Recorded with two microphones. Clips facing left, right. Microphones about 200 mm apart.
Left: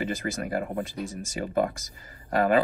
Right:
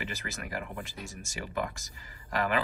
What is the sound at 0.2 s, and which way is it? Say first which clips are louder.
Speech: left 9 dB; 40° left (ahead or behind).